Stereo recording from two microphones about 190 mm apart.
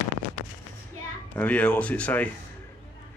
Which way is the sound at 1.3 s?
10° left (ahead or behind).